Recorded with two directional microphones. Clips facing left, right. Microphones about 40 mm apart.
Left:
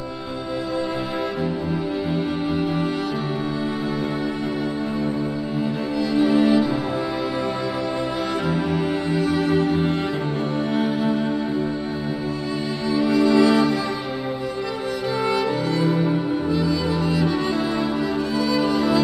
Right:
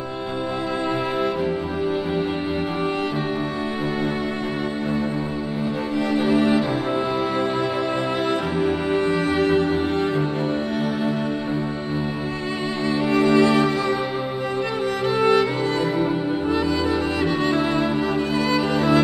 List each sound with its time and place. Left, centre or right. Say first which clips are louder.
6.1 s music: left 2 dB; right
8.3 s music: right 1 dB; right
12.9 s music: left 1 dB; right
15.1 s music: right 4 dB; right